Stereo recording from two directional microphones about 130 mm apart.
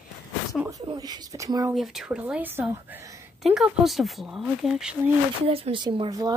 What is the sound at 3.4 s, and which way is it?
Speech, 5° right (ahead or behind).